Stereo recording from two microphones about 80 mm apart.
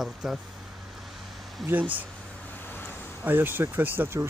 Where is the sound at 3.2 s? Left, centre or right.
Right.